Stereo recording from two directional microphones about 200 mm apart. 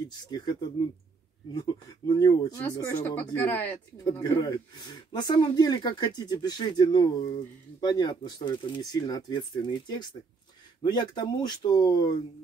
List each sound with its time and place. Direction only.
0.3 s speech: 20° left (ahead or behind)
4.0 s speech: 20° left (ahead or behind)